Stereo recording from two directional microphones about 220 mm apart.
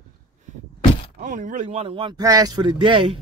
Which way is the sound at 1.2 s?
35° right (ahead or behind).